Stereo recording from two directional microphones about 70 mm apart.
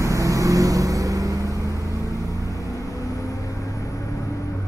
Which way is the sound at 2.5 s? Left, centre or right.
Left.